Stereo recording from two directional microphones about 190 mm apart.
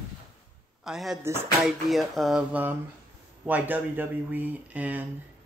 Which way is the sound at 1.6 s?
Centre (ahead or behind).